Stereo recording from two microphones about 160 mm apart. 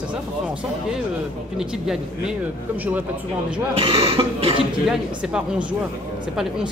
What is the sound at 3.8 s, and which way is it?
Cough, 35° right (ahead or behind).